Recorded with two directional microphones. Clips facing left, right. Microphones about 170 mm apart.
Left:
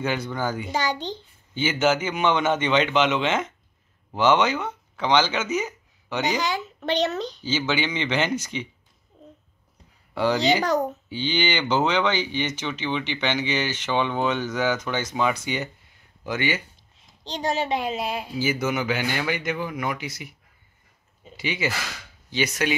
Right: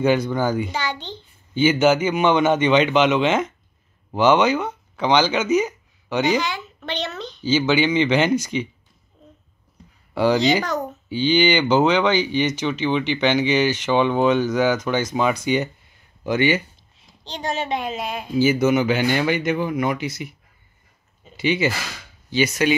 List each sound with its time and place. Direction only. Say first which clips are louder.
0.0 s speech: right 7 dB; 15° right (ahead or behind)
0.7 s a woman's voice: left 1 dB; 40° left (ahead or behind)
1.5 s speech: right 6 dB; 15° right (ahead or behind)
6.4 s a child's voice: left 2 dB; 40° left (ahead or behind)
7.4 s speech: right 8 dB; 15° right (ahead or behind)
10.1 s speech: right 4 dB; 10° right (ahead or behind)
17.2 s a woman's voice: left 1 dB; 40° left (ahead or behind)
18.4 s speech: right 9 dB; 25° right (ahead or behind)
21.4 s speech: right 8 dB; 25° right (ahead or behind)
22.3 s speech: right 6 dB; centre (ahead or behind)